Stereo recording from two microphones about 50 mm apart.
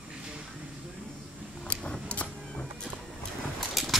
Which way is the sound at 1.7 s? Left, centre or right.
Left.